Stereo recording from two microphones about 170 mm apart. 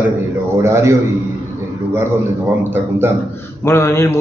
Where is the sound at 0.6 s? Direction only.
15° right (ahead or behind).